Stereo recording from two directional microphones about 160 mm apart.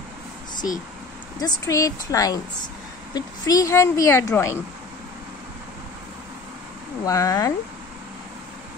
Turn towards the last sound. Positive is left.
turn(degrees=20)  # may be behind; listen again after turning